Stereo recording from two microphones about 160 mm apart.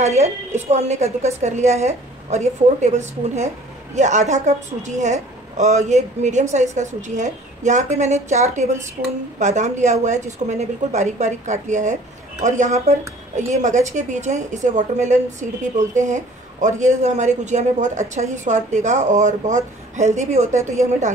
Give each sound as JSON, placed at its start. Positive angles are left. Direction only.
{"t": 0.0, "sound": "a woman's voice", "side_deg": -45}